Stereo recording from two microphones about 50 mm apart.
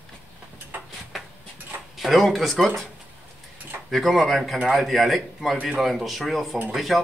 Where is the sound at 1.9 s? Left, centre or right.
Centre.